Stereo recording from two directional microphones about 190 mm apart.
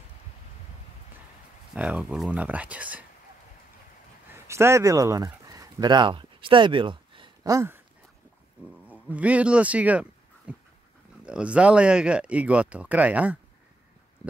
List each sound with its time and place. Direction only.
1.8 s speech: 5° right (ahead or behind)
4.3 s speech: 15° right (ahead or behind)
8.8 s speech: 10° right (ahead or behind)